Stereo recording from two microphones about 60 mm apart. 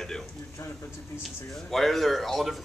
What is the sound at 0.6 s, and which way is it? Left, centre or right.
Speech, left.